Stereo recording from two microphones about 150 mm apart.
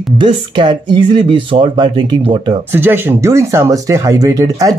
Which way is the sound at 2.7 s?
15° right (ahead or behind).